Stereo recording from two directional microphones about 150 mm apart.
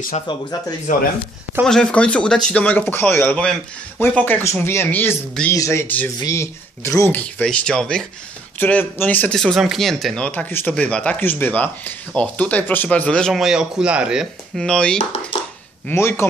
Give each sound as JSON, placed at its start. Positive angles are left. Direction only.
{"t": 0.3, "sound": "speech", "side_deg": 30}
{"t": 1.6, "sound": "speech", "side_deg": 5}
{"t": 15.9, "sound": "speech", "side_deg": 15}